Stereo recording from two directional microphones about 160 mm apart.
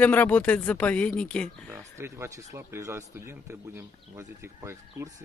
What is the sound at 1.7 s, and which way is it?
Speech, 15° right (ahead or behind).